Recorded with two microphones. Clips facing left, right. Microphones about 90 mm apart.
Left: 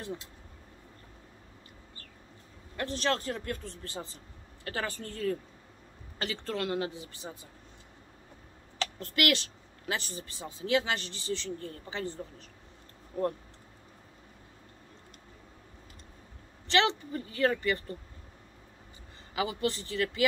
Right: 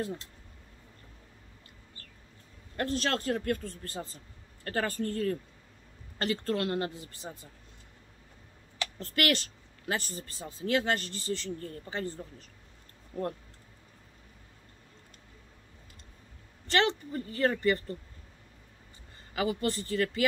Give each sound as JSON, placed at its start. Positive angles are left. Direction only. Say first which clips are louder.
{"t": 2.8, "sound": "speech", "louder": "even", "side_deg": -45}
{"t": 9.0, "sound": "speech", "louder": "even", "side_deg": -40}
{"t": 13.1, "sound": "speech", "louder": "left 3 dB", "side_deg": 30}
{"t": 16.6, "sound": "speech", "louder": "left 1 dB", "side_deg": -40}
{"t": 19.3, "sound": "speech", "louder": "right 1 dB", "side_deg": -45}